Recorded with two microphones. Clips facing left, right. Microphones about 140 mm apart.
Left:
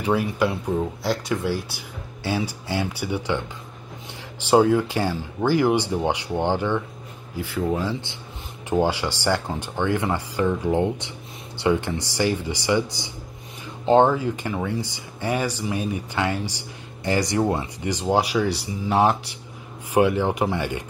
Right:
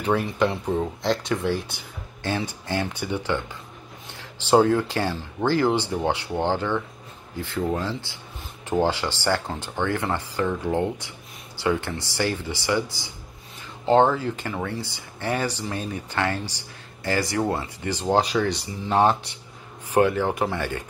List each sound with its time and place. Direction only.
0.0 s speech: 10° left (ahead or behind)
4.5 s speech: 15° left (ahead or behind)